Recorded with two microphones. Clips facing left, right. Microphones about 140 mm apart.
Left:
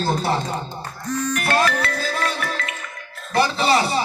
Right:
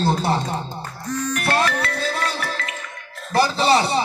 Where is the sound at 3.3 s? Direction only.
35° right (ahead or behind).